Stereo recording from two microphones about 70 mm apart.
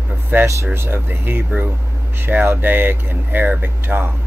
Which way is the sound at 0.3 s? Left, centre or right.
Right.